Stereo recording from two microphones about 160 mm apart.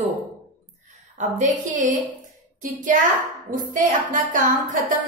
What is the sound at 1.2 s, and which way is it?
A woman's voice, 50° right (ahead or behind).